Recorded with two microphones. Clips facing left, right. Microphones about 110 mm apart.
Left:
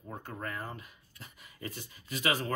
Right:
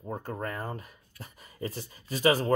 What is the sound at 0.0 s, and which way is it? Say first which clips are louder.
Speech: right 6 dB; 35° right (ahead or behind).